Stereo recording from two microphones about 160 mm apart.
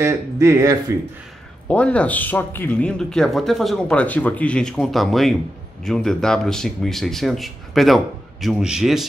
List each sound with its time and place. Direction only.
0.0 s speech: 15° right (ahead or behind)
1.7 s speech: 10° left (ahead or behind)